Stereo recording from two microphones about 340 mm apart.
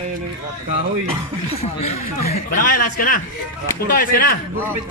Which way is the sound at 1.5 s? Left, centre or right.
Centre.